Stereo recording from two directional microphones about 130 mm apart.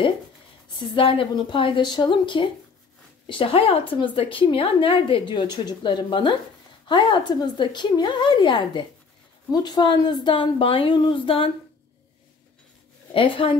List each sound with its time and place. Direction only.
0.7 s a woman's voice: 40° left (ahead or behind)
13.1 s a woman's voice: 45° left (ahead or behind)